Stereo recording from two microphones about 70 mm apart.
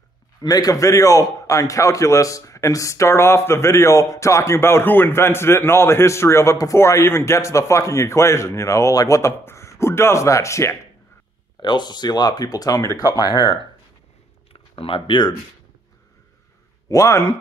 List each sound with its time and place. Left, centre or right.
0.4 s a man's voice: left
11.6 s speech: left
16.9 s a man's voice: left